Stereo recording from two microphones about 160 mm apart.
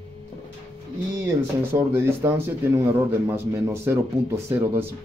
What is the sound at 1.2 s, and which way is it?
Speech, 15° right (ahead or behind).